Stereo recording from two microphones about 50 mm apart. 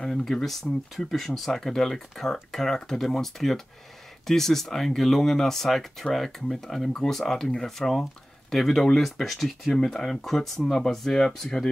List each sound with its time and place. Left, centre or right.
0.0 s speech: centre